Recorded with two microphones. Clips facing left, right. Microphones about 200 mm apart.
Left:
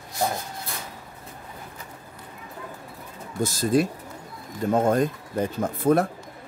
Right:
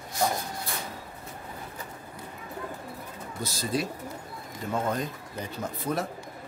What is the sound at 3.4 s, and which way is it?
Speech, 45° left (ahead or behind).